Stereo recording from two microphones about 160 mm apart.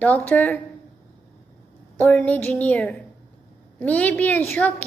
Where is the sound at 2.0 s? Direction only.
10° left (ahead or behind).